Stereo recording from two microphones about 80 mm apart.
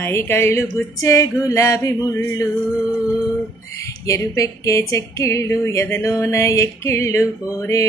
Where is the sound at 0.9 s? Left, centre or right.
Left.